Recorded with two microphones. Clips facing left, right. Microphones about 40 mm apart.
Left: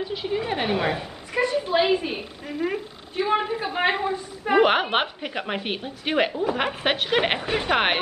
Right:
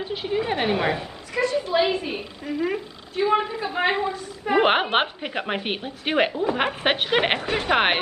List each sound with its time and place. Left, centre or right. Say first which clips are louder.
0.0 s a woman's voice: right 1 dB; centre
1.3 s a woman's voice: even; left
4.6 s a woman's voice: even; centre